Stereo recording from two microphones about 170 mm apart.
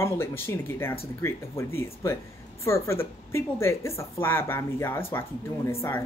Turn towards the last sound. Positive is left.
turn(degrees=15)  # may be behind; listen again after turning